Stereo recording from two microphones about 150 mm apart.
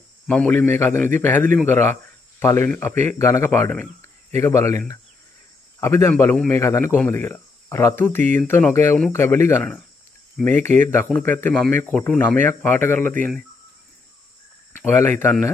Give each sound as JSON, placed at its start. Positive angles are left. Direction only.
{"t": 0.3, "sound": "speech", "side_deg": 10}
{"t": 14.8, "sound": "speech", "side_deg": 15}